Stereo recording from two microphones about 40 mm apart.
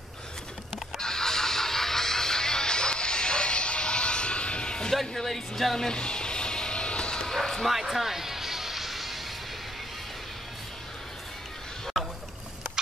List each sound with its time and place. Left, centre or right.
0.9 s music: centre
4.9 s speech: centre
5.9 s music: left
7.2 s basketball bounce: centre
7.6 s music: centre
12.8 s turkey: centre